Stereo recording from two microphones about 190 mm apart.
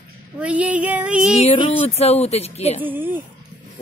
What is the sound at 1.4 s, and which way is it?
Speech, 35° left (ahead or behind).